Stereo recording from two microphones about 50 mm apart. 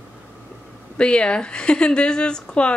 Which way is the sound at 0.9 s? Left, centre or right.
Left.